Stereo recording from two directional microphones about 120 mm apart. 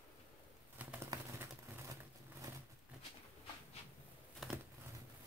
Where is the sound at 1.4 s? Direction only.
20° right (ahead or behind).